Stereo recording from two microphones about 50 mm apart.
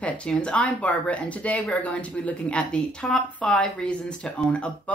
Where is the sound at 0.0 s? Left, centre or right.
Left.